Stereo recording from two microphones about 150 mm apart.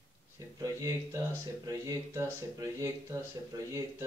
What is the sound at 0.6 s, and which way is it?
Speech, 20° right (ahead or behind).